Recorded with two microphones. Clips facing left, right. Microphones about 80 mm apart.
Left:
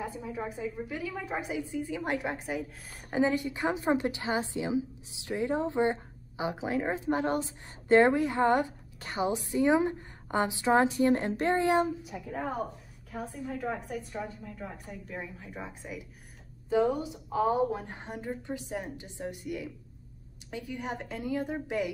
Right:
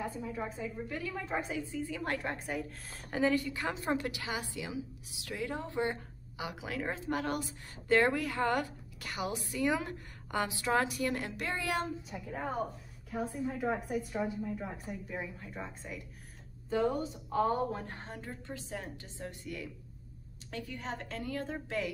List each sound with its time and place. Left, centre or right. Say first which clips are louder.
0.0 s speech: left 2 dB; centre
2.9 s a woman's voice: left 3 dB; centre
11.8 s a woman's voice: left 7 dB; centre